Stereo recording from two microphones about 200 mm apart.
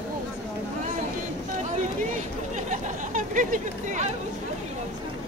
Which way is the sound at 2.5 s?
40° right (ahead or behind).